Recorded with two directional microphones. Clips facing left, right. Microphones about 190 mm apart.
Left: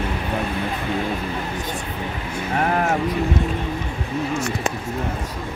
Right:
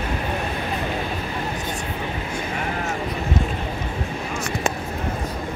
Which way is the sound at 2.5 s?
55° left (ahead or behind).